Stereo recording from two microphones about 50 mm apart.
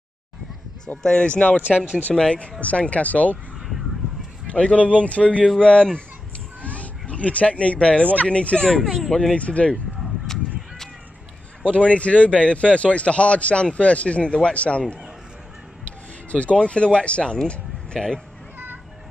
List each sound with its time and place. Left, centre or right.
0.9 s a man's voice: left
1.6 s speech: right
2.1 s a man's voice: centre
3.5 s a sound: centre
4.5 s a man's voice: left
6.6 s cat: left
8.3 s speech: left
9.4 s a man's voice: left
11.6 s a man's voice: left